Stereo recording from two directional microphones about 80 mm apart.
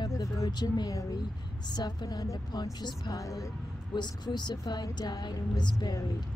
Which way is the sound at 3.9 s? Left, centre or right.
Left.